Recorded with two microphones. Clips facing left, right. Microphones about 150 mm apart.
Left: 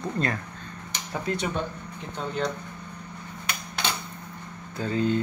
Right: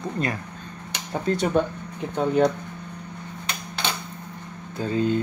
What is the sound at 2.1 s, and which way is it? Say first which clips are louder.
Speech: right 9 dB; 55° right (ahead or behind).